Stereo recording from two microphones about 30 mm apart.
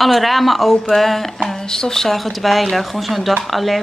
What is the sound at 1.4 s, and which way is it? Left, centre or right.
Speech, centre.